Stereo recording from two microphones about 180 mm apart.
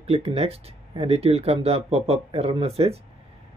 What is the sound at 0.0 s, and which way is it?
Speech, 35° right (ahead or behind).